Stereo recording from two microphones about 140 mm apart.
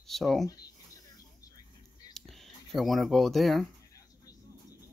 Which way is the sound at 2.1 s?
Centre (ahead or behind).